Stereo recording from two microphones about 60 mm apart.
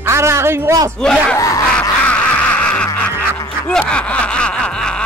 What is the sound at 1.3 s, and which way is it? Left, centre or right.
Screaming, left.